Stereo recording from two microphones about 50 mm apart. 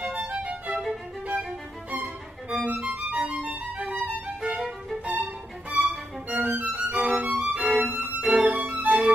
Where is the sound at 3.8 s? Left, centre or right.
Centre.